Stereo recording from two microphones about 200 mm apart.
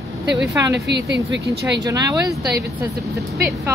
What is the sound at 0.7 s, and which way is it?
Speech, 60° right (ahead or behind).